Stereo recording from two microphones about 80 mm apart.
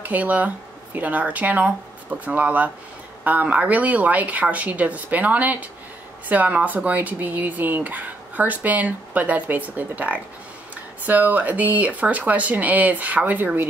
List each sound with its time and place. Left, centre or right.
0.0 s speech: centre